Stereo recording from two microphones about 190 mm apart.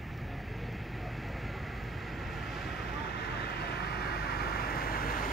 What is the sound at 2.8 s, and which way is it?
Vehicle, 60° left (ahead or behind).